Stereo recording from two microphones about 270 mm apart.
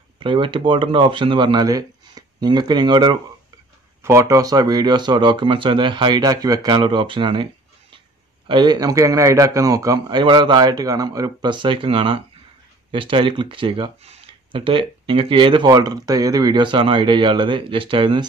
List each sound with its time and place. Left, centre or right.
0.2 s a man's voice: centre
8.5 s a man's voice: centre